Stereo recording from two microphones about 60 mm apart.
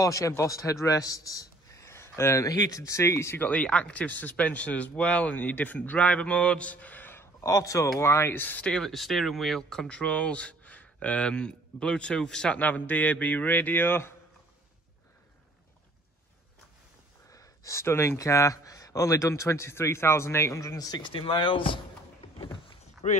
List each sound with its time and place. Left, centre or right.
0.0 s speech: left
0.5 s a man's voice: left
2.4 s speech: left
3.3 s speech: left
7.4 s speech: left
8.0 s speech: left
8.7 s speech: centre
12.5 s speech: left
17.3 s a sound: left
17.8 s speech: left
20.6 s speech: left